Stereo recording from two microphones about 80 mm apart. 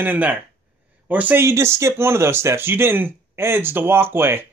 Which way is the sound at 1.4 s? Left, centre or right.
Right.